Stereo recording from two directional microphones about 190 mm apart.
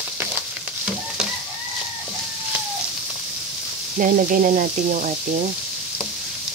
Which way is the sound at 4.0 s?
45° right (ahead or behind).